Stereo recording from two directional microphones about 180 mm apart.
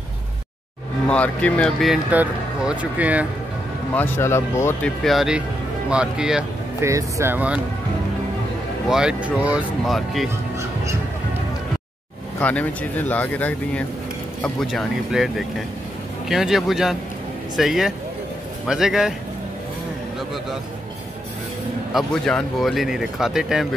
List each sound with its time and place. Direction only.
1.0 s speech: 10° left (ahead or behind); by 3.3 s 10° right (ahead or behind)
3.9 s speech: 10° left (ahead or behind)
5.0 s speech: centre (ahead or behind)
6.8 s speech: 15° right (ahead or behind)
8.8 s speech: 5° right (ahead or behind)
12.4 s speech: 10° left (ahead or behind)
21.9 s speech: 5° left (ahead or behind)